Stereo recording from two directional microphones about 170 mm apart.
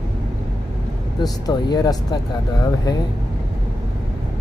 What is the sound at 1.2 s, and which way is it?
Speech, 25° left (ahead or behind).